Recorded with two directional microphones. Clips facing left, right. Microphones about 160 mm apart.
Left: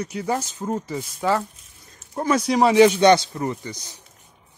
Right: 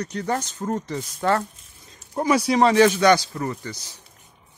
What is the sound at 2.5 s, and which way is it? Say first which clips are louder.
Speech: left 1 dB; 5° left (ahead or behind).